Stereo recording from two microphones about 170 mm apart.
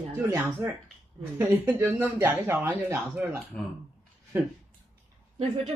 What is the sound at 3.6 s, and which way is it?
Speech, 5° left (ahead or behind).